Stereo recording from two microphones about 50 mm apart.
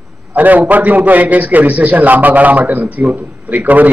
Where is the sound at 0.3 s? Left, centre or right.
Right.